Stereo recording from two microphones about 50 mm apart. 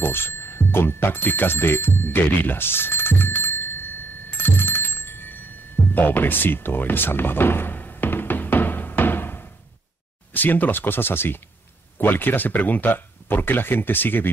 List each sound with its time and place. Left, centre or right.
0.0 s speech: left
4.3 s telephone bell ringing: left
5.9 s a sound: left
10.3 s speech: left